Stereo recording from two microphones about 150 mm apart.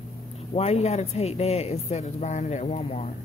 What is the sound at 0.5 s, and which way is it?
Speech, 40° left (ahead or behind).